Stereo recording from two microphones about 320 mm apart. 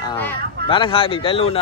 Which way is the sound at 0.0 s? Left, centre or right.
Centre.